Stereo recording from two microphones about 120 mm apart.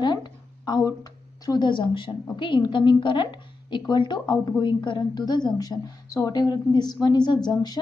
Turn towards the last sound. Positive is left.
turn(degrees=35)  # may be behind; listen again after turning